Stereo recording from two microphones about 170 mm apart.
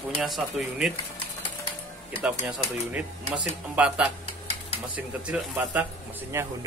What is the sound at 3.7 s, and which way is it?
A man's voice, 5° right (ahead or behind).